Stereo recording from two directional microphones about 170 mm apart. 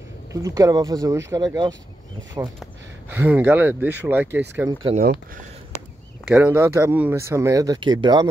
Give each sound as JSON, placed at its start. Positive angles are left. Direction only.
{"t": 0.3, "sound": "speech", "side_deg": -20}
{"t": 6.2, "sound": "speech", "side_deg": -10}